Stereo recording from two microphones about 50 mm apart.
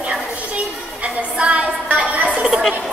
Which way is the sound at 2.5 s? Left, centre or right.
Centre.